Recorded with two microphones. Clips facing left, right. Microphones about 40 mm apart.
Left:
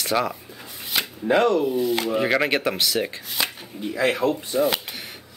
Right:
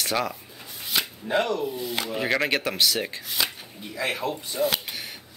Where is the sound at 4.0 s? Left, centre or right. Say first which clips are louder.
Left 6 dB; left.